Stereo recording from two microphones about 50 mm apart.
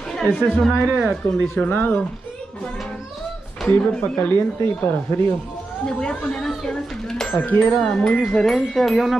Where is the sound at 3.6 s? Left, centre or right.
Left.